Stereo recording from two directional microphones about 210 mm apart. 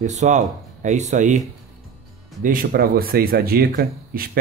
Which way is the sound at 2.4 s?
40° right (ahead or behind).